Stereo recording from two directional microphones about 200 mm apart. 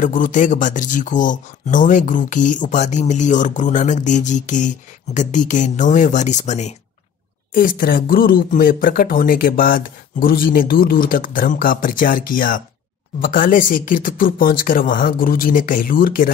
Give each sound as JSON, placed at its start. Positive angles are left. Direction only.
{"t": 0.0, "sound": "speech", "side_deg": 40}